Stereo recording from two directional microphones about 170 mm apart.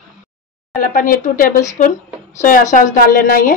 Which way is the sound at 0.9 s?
55° left (ahead or behind).